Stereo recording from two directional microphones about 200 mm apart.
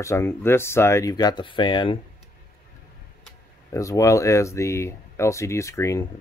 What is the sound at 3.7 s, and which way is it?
Speech, 15° left (ahead or behind).